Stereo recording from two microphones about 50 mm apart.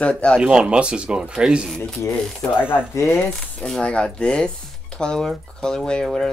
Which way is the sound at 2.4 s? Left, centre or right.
Left.